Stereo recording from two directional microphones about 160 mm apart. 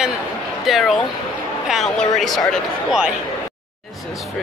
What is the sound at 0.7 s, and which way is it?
Speech, centre (ahead or behind).